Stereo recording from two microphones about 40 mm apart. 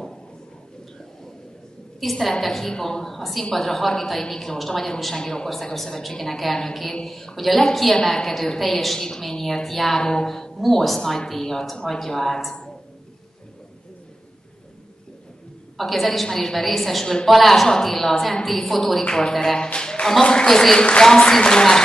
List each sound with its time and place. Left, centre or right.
2.0 s a woman's voice: centre
15.8 s a woman's voice: centre
19.0 s a woman's voice: centre
19.6 s a woman's voice: centre